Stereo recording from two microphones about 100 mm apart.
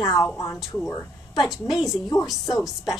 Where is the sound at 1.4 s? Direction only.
Centre (ahead or behind).